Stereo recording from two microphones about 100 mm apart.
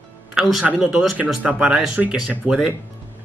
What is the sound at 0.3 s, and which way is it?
Speech, 5° right (ahead or behind).